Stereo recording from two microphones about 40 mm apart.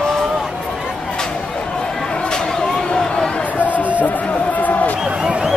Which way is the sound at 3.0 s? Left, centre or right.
Left.